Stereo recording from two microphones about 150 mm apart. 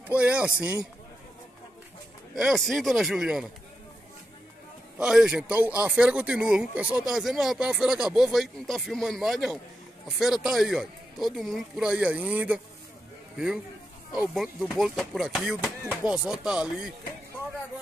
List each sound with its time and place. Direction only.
0.1 s speech: 10° right (ahead or behind)
2.3 s speech: centre (ahead or behind)
4.9 s speech: 5° right (ahead or behind)
14.1 s speech: 5° right (ahead or behind)